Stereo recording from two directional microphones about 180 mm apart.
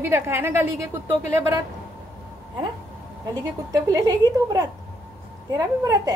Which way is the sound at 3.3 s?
20° right (ahead or behind).